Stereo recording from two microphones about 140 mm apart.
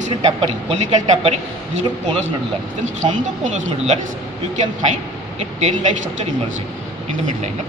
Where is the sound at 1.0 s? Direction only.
55° right (ahead or behind).